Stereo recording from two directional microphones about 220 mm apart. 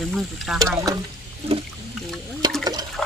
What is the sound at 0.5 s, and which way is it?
Speech, 15° right (ahead or behind).